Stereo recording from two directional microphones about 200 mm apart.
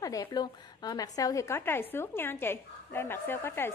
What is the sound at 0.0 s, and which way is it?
A woman's voice, 15° left (ahead or behind).